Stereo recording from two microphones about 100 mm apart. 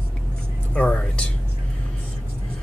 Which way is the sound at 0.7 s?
15° left (ahead or behind).